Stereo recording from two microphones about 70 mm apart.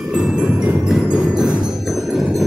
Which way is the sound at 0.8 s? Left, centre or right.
Centre.